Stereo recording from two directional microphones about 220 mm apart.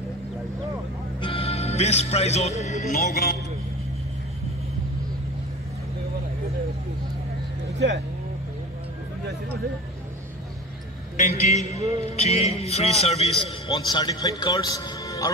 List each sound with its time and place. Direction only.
1.2 s a man's voice: 25° left (ahead or behind); by 3.3 s 45° left (ahead or behind)
11.1 s a man's voice: 30° left (ahead or behind)
13.7 s a man's voice: 20° left (ahead or behind)